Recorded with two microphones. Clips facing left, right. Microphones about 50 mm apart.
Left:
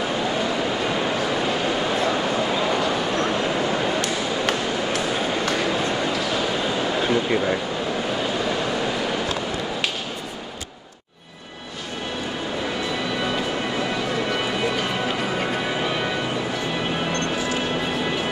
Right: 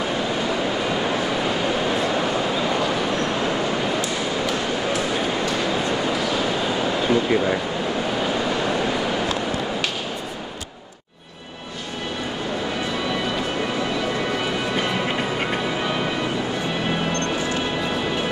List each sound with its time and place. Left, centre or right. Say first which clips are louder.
1.9 s vehicle: even; centre
4.0 s ping: even; left
7.1 s a sound: right 3 dB; centre